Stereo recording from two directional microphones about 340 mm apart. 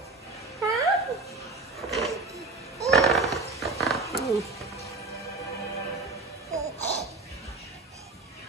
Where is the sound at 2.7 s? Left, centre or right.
Centre.